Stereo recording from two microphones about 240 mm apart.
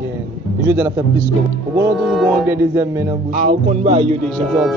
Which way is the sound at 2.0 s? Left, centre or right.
Centre.